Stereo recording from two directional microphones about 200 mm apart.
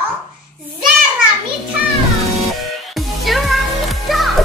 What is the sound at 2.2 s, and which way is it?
Music, centre (ahead or behind).